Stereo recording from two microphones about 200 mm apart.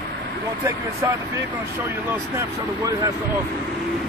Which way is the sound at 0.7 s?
15° right (ahead or behind).